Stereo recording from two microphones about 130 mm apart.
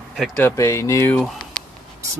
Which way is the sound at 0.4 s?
20° left (ahead or behind).